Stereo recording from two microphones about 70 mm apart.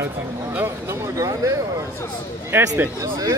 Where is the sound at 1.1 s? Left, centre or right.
Right.